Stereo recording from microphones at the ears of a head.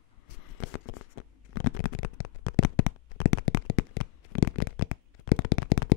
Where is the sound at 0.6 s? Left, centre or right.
Left.